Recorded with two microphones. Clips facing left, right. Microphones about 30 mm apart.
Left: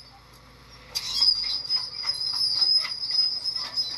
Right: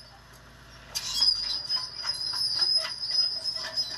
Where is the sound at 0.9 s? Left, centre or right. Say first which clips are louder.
Left 3 dB; left.